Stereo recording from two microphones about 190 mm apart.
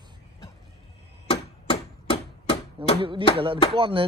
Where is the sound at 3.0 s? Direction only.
25° right (ahead or behind).